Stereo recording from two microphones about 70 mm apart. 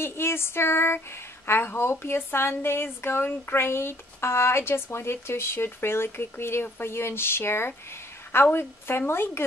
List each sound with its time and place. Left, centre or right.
0.0 s speech: left